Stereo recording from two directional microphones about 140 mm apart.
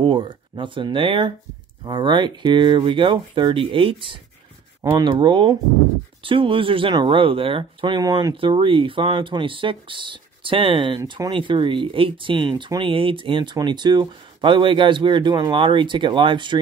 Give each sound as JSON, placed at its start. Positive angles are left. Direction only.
{"t": 0.0, "sound": "speech", "side_deg": -35}